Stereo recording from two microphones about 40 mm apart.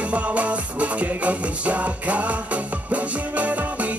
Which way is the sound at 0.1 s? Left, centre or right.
Right.